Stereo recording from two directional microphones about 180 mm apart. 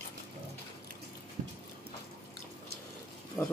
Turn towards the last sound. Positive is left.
turn(degrees=10)  # may be behind; listen again after turning